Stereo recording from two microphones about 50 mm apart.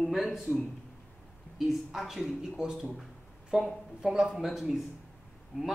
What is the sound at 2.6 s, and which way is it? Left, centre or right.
Speech, centre.